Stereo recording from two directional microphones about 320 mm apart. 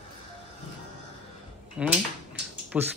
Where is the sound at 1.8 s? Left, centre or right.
Centre.